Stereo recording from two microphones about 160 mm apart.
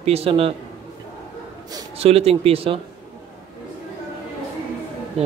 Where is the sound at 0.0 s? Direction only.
40° right (ahead or behind).